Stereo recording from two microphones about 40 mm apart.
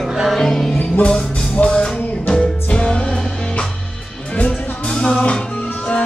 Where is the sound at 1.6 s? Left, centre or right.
Left.